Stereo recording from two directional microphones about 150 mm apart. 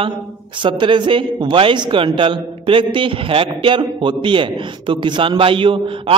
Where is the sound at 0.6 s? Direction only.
35° right (ahead or behind).